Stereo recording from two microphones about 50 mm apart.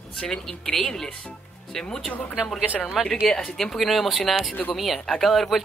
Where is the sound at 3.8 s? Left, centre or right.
Centre.